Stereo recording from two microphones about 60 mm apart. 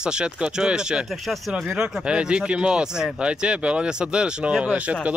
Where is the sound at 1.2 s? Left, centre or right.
Centre.